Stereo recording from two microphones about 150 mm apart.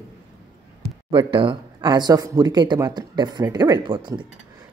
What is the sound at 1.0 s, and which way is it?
Speech, 35° right (ahead or behind).